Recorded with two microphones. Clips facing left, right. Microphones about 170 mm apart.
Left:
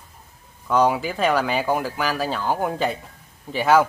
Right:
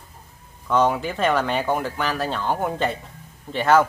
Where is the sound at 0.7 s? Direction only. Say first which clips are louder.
Left 1 dB; 5° left (ahead or behind).